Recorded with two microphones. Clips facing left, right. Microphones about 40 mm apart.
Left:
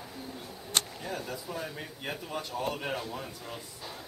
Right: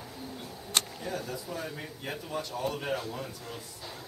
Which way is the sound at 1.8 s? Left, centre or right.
Centre.